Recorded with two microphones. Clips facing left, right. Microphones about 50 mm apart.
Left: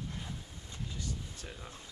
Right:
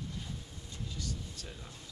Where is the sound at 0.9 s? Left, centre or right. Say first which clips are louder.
Right 1 dB; left.